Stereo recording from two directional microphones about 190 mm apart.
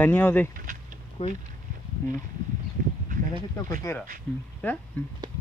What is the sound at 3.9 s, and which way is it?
Speech, 15° left (ahead or behind).